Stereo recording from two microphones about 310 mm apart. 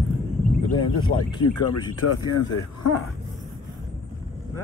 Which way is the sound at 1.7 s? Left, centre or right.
Left.